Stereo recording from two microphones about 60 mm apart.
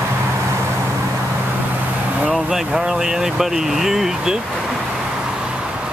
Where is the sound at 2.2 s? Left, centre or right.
Centre.